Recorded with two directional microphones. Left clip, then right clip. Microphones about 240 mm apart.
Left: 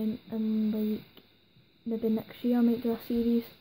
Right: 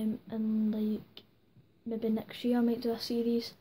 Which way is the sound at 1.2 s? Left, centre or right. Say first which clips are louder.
Right 4 dB; centre.